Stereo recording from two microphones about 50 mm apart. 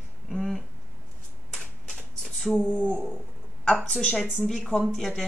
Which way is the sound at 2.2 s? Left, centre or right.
Centre.